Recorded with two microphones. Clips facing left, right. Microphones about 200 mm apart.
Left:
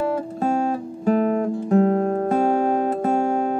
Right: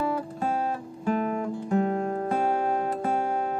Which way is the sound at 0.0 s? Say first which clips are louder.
Left 5 dB; 45° left (ahead or behind).